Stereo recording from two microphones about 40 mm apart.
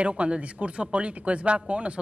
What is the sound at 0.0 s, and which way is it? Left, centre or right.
Speech, right.